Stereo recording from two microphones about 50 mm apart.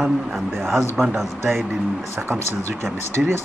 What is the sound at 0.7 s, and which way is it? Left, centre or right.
Speech, centre.